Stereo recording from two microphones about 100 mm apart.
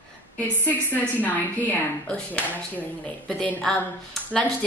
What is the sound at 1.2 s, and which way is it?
Speech, 15° left (ahead or behind).